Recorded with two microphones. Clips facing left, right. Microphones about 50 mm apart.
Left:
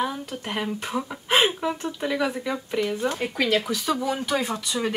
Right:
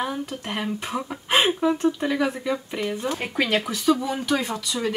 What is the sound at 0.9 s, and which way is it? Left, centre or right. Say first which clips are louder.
Speech: even; centre.